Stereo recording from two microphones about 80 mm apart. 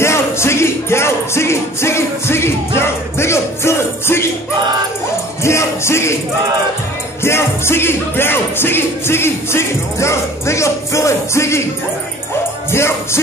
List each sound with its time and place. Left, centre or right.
0.0 s music: left
5.4 s music: left
7.2 s music: left
12.7 s music: left